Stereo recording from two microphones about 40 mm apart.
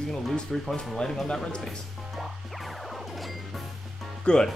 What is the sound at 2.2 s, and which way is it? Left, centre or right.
Music, centre.